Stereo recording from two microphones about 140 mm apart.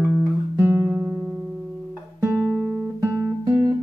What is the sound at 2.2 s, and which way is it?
Guitar, 10° right (ahead or behind).